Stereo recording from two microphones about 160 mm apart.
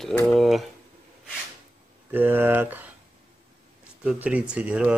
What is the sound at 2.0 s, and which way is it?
Speech, 10° right (ahead or behind).